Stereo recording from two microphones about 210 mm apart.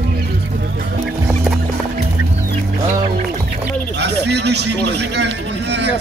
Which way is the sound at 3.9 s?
55° right (ahead or behind).